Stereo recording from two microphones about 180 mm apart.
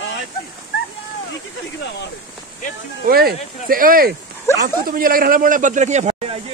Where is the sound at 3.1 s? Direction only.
60° right (ahead or behind); by 6.4 s 40° right (ahead or behind).